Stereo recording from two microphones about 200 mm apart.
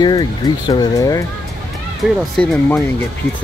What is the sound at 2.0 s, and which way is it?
Speech, 5° left (ahead or behind).